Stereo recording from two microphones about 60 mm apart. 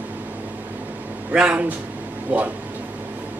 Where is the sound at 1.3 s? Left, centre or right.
Centre.